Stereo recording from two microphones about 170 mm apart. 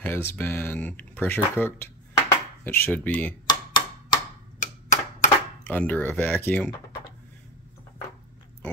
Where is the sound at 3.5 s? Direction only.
25° left (ahead or behind).